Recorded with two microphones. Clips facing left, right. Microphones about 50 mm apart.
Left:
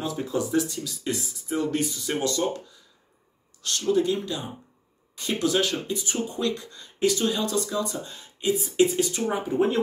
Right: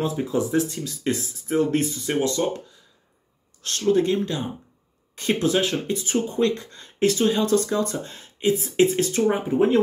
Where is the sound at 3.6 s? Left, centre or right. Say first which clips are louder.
Right 3 dB; right.